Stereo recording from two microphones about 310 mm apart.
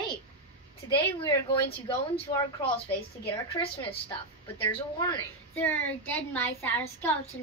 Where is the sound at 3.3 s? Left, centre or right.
Centre.